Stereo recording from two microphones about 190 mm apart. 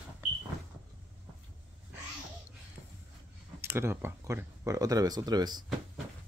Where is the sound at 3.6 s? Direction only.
10° right (ahead or behind).